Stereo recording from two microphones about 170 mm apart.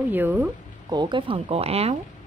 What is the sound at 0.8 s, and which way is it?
Speech, 25° right (ahead or behind).